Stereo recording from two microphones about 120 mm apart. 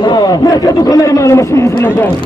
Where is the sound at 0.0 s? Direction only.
35° left (ahead or behind).